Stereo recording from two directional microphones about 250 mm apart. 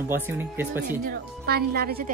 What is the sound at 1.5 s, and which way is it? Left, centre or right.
Speech, right.